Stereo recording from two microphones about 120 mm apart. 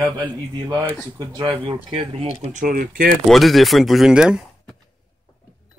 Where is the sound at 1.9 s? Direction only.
55° right (ahead or behind).